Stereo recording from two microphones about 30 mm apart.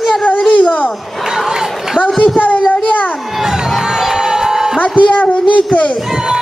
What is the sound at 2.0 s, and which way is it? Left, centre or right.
Speech, left.